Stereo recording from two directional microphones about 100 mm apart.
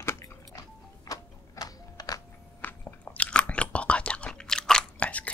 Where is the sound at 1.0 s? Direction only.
35° left (ahead or behind).